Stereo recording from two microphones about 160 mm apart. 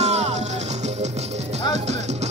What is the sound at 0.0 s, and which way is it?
Music, 45° right (ahead or behind).